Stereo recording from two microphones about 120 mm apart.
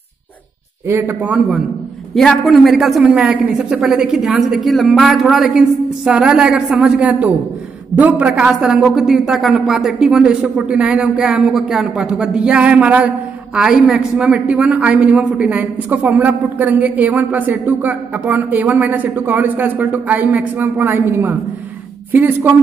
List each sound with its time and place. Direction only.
0.8 s a woman's voice: 20° right (ahead or behind)
2.1 s a woman's voice: centre (ahead or behind); by 22.5 s 15° right (ahead or behind)